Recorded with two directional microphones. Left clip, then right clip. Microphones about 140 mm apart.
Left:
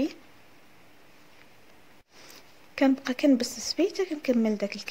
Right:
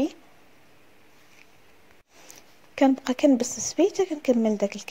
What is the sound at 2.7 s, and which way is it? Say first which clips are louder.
A woman's voice: right 3 dB; 25° right (ahead or behind).